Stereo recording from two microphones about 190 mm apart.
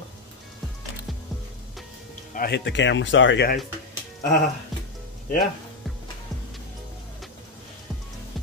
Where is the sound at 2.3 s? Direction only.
60° left (ahead or behind); by 3.5 s 80° left.